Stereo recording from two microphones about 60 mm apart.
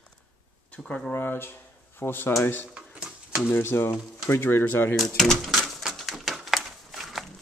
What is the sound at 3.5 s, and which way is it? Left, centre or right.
Speech, left.